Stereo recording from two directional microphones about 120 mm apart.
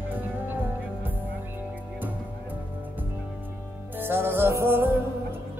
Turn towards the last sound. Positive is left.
turn(degrees=-20)  # may be behind; listen again after turning